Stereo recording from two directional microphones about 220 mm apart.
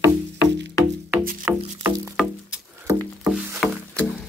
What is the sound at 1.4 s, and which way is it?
Music, 10° right (ahead or behind).